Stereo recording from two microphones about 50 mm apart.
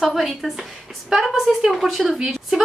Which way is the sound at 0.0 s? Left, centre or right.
Centre.